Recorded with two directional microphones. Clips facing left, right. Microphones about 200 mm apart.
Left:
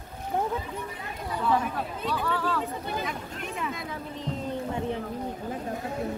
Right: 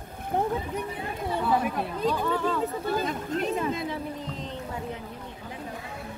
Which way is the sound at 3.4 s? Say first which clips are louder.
Right 8 dB; 35° right (ahead or behind).